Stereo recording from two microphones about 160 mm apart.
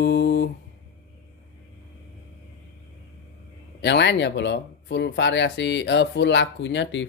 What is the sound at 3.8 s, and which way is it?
Speech, 90° left.